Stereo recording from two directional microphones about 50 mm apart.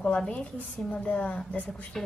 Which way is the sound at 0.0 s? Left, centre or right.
Centre.